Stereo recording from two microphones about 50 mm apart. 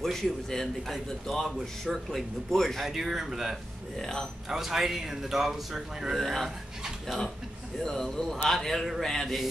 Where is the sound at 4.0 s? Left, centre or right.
Centre.